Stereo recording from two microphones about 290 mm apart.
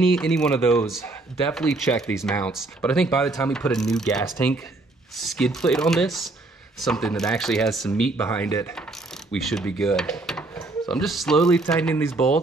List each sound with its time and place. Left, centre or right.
0.1 s speech: centre